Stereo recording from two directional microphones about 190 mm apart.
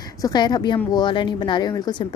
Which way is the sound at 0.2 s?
20° left (ahead or behind).